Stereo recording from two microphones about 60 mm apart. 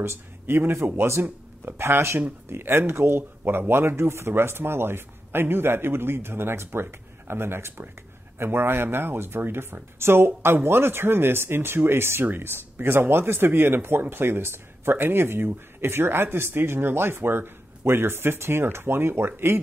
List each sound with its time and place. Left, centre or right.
0.0 s speech: right